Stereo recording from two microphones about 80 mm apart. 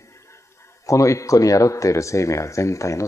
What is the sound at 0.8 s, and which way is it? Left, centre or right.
Speech, left.